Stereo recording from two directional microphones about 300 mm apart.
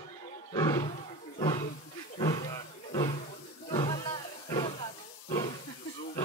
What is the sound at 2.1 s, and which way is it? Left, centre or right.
Roaring cats, centre.